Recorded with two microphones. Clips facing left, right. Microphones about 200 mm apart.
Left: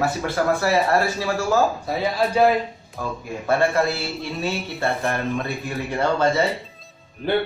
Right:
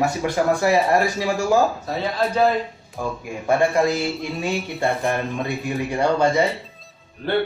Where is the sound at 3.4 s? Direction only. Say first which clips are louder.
Right 2 dB; 15° right (ahead or behind).